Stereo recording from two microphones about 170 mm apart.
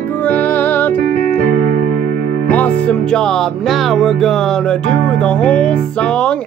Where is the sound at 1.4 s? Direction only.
60° right (ahead or behind).